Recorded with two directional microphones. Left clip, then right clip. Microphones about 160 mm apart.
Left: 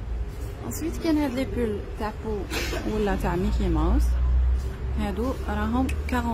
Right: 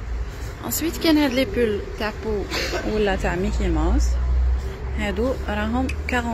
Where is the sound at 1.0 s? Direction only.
20° right (ahead or behind).